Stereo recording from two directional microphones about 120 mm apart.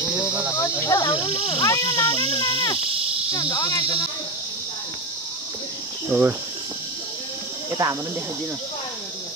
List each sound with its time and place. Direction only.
0.6 s cricket: 25° left (ahead or behind)
1.1 s speech: 50° left (ahead or behind)
1.6 s cricket: 25° left (ahead or behind)
2.2 s speech: 50° left (ahead or behind)
3.3 s cricket: 30° left (ahead or behind)
6.0 s speech: 15° right (ahead or behind)
7.8 s speech: 30° right (ahead or behind)